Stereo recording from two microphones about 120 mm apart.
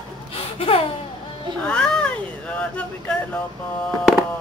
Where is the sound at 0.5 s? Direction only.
50° left (ahead or behind).